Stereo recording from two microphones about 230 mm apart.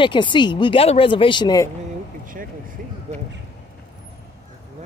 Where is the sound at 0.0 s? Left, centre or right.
Left.